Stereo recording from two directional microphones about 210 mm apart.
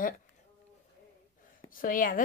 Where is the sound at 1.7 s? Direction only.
40° left (ahead or behind).